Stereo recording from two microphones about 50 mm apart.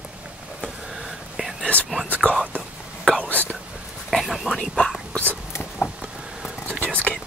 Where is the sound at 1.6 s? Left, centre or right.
Left.